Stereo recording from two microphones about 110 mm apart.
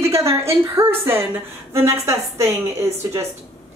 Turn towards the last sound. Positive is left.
turn(degrees=-25)  # may be behind; listen again after turning